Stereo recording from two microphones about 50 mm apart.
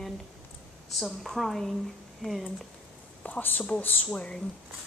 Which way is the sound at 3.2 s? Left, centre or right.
Left.